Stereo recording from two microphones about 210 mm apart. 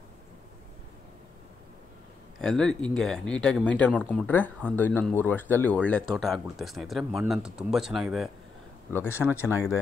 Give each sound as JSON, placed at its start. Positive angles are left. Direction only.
{"t": 2.4, "sound": "speech", "side_deg": 0}
{"t": 8.9, "sound": "speech", "side_deg": 10}